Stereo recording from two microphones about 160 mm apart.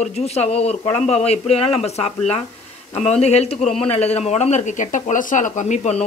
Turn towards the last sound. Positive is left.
turn(degrees=45)  # may be behind; listen again after turning